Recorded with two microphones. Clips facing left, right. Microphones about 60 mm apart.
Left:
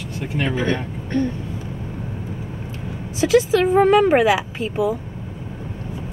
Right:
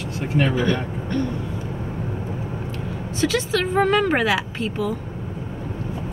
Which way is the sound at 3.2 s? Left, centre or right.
Centre.